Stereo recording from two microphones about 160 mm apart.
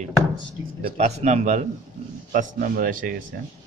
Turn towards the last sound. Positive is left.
turn(degrees=-60)  # may be behind; listen again after turning